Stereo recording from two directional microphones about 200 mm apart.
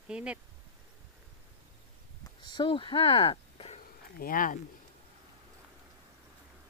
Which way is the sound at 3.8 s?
45° left (ahead or behind).